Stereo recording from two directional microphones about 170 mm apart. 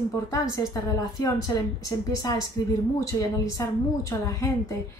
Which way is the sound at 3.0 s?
20° left (ahead or behind).